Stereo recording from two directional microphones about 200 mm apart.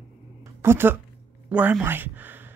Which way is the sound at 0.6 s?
10° right (ahead or behind).